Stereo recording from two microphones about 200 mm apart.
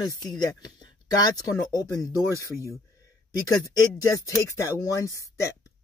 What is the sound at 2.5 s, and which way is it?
Speech, 15° right (ahead or behind).